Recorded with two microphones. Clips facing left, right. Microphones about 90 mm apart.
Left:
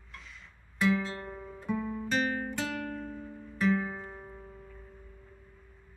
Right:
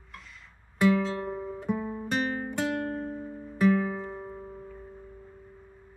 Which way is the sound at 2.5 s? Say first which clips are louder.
Right 5 dB; 50° right (ahead or behind).